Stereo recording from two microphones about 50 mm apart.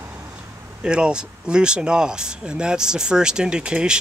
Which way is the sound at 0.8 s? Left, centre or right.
Centre.